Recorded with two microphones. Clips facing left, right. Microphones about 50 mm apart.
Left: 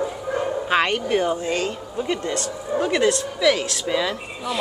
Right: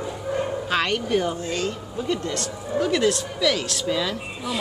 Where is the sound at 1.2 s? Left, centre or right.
Centre.